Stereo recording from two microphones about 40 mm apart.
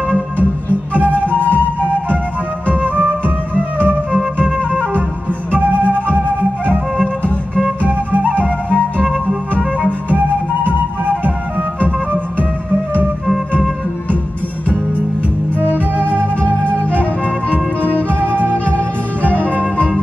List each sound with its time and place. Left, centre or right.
1.0 s flute: left
2.7 s music: right
5.5 s music: right
7.8 s flute: right
8.6 s music: left
10.7 s music: right
15.6 s music: left
18.3 s music: right